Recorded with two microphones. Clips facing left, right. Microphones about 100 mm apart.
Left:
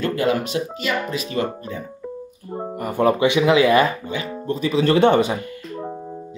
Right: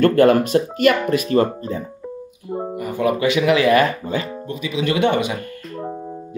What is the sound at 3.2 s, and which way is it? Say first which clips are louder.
Speech: right 1 dB; 20° left (ahead or behind).